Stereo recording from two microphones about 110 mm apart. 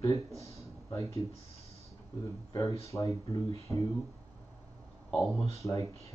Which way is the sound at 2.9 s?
30° left (ahead or behind).